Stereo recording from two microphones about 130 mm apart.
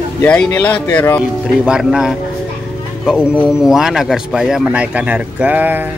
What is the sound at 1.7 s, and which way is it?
Speech, 5° right (ahead or behind).